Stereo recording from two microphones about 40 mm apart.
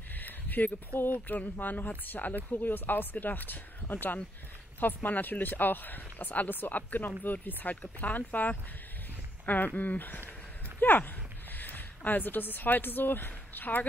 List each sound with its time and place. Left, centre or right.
0.1 s a sound: left
1.1 s speech: left
9.8 s speech: left